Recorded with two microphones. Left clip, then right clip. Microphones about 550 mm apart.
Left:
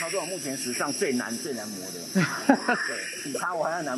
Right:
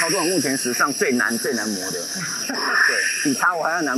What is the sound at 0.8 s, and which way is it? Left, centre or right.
Speech, centre.